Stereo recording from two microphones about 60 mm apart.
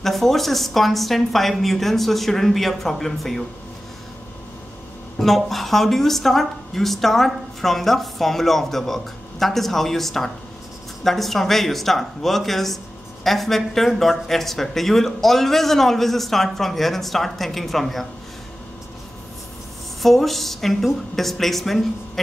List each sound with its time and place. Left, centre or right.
0.0 s a woman's voice: centre
5.2 s a woman's voice: centre
20.0 s a woman's voice: centre